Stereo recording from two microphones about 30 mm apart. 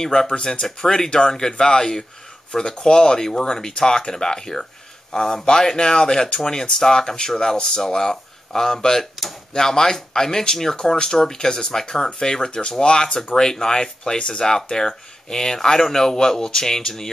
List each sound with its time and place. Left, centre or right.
0.0 s speech: centre